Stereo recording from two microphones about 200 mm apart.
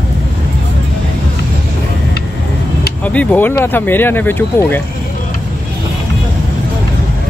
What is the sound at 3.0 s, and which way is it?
Speech, 5° left (ahead or behind).